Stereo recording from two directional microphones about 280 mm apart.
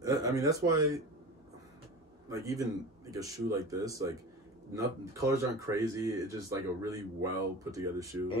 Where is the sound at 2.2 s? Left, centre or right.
Centre.